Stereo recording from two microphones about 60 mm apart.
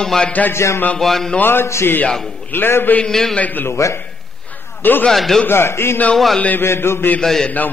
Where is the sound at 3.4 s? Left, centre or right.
Left.